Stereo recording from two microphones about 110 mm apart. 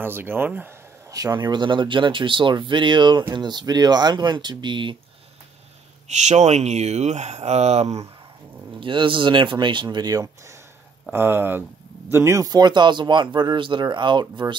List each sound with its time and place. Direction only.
0.0 s speech: 20° right (ahead or behind)
1.1 s speech: 35° right (ahead or behind)
6.0 s speech: 90° right; by 8.1 s 75° right (ahead or behind)
8.7 s speech: 50° right (ahead or behind)
11.1 s speech: 20° right (ahead or behind); by 14.6 s 45° right (ahead or behind)